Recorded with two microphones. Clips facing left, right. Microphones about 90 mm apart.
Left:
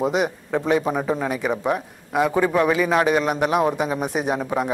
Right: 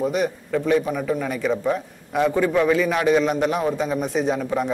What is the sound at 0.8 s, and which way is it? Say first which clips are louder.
Speech: left 1 dB; 30° left (ahead or behind).